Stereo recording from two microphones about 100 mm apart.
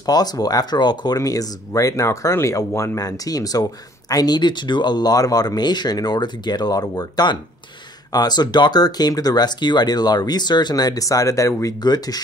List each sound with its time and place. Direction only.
0.0 s speech: 40° left (ahead or behind)